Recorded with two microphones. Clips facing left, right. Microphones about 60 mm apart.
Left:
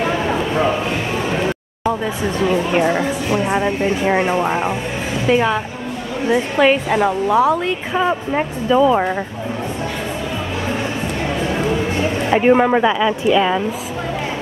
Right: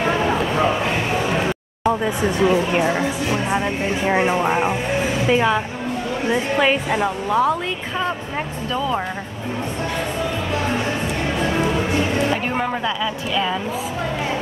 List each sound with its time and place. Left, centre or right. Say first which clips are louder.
0.0 s a sound: even; centre
2.2 s speech: right 1 dB; centre
2.7 s speech: left 3 dB; centre
8.4 s speech: left 12 dB; centre
12.3 s speech: left 8 dB; left